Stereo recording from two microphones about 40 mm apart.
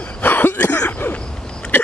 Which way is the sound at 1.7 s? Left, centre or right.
Left.